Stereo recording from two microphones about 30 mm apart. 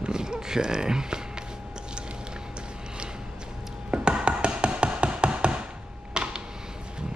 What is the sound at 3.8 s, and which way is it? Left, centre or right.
Tap, right.